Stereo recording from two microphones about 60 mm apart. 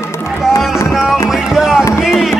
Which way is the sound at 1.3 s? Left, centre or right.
Centre.